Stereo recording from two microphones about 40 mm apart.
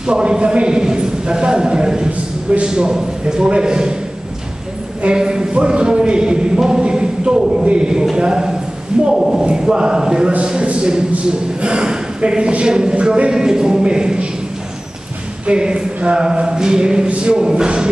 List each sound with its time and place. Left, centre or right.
0.0 s speech: right
5.0 s a man's voice: centre
9.4 s speech: right
13.3 s a man's voice: centre
15.4 s speech: right